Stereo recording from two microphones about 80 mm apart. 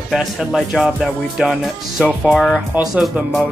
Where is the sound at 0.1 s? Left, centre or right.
Centre.